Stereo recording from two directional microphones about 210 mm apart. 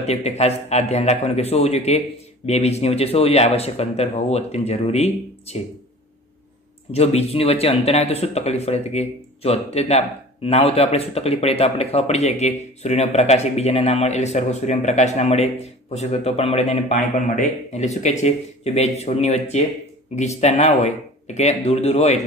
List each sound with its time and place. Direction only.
0.0 s a man's voice: 30° left (ahead or behind)
6.9 s speech: 30° left (ahead or behind)